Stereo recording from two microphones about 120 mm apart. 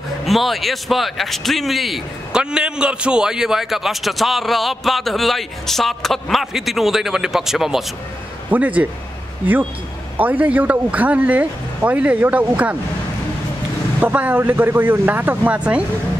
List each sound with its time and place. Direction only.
0.2 s speech: centre (ahead or behind)
10.1 s speech: 15° right (ahead or behind)
14.0 s speech: 10° right (ahead or behind)